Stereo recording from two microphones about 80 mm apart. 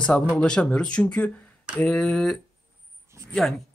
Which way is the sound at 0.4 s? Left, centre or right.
Centre.